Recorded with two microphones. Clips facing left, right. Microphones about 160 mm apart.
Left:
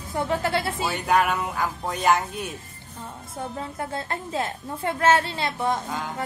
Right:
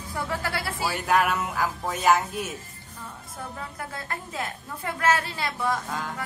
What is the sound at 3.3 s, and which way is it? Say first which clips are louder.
A woman's voice: left 6 dB; 25° left (ahead or behind).